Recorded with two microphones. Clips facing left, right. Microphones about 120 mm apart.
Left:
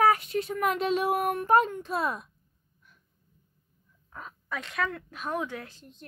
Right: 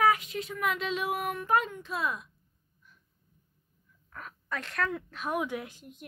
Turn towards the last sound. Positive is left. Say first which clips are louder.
# right 3 dB
turn(degrees=-15)  # may be behind; listen again after turning